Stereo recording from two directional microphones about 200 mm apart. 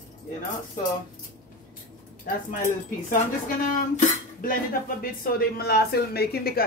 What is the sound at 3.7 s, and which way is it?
Speech, 45° left (ahead or behind).